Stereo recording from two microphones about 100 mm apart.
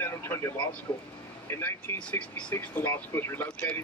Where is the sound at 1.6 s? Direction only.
25° left (ahead or behind).